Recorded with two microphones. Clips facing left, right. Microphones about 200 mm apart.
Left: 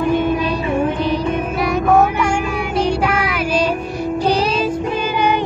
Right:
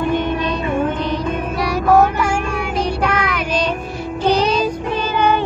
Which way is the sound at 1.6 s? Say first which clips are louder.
Right 1 dB; centre (ahead or behind).